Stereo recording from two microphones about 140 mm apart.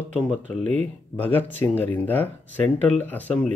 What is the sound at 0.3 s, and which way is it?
Speech, 5° left (ahead or behind).